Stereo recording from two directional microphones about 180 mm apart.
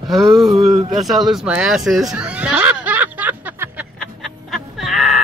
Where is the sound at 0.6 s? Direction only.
35° right (ahead or behind).